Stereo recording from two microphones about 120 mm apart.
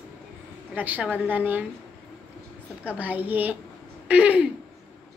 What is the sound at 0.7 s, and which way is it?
Speech, 15° right (ahead or behind).